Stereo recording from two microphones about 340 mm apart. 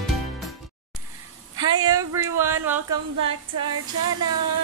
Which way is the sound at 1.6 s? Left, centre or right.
Centre.